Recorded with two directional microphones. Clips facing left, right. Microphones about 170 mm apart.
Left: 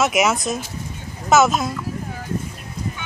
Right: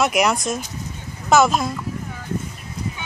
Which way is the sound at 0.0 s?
Centre (ahead or behind).